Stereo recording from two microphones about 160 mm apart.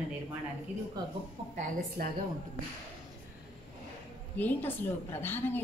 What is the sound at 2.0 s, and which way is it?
Speech, 65° right (ahead or behind).